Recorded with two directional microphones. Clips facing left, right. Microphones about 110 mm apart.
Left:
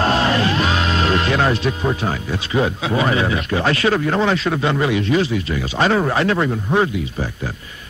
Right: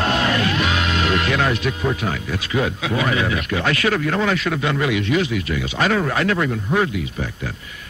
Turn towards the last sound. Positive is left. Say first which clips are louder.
# left 2 dB
turn(degrees=30)  # may be behind; listen again after turning